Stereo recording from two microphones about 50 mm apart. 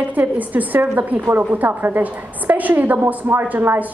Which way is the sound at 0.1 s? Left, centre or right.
Right.